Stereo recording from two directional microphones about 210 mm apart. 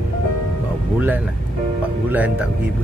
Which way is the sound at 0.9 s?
10° right (ahead or behind).